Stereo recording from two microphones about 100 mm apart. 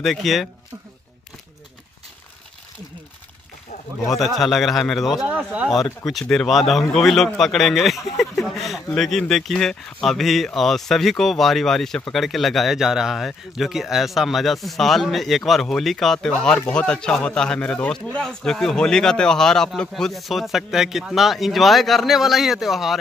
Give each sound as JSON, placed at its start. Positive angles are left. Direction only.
{"t": 0.0, "sound": "speech", "side_deg": 0}
{"t": 4.1, "sound": "speech", "side_deg": 0}
{"t": 5.2, "sound": "speech", "side_deg": -10}
{"t": 6.2, "sound": "speech", "side_deg": 5}
{"t": 8.2, "sound": "a sound", "side_deg": 0}
{"t": 8.9, "sound": "speech", "side_deg": 5}
{"t": 16.3, "sound": "speech", "side_deg": 15}